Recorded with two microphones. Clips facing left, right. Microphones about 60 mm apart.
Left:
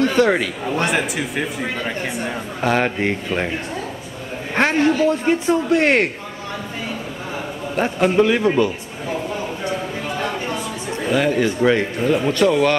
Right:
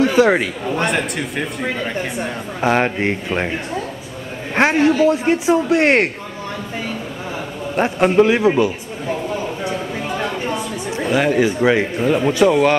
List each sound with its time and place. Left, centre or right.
0.0 s speech: centre
0.7 s speech: centre
4.6 s speech: centre
8.1 s speech: centre
10.0 s a sound: centre